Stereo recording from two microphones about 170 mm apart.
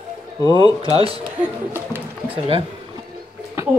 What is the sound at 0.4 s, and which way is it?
Speech, 25° left (ahead or behind).